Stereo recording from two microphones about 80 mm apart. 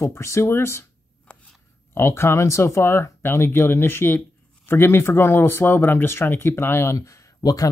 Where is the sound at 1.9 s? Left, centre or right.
Left.